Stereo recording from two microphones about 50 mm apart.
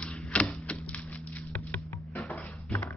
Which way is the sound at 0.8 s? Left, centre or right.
Left.